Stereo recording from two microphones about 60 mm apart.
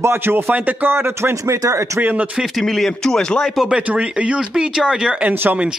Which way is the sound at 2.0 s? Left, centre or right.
Right.